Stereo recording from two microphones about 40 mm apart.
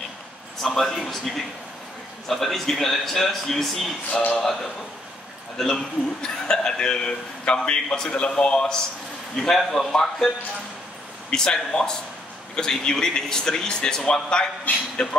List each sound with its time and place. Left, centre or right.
0.6 s a man's voice: centre
5.7 s a man's voice: centre
9.4 s a man's voice: centre; by 15.1 s left